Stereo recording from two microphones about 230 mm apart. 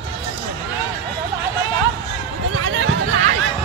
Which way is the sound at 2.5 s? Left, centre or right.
Right.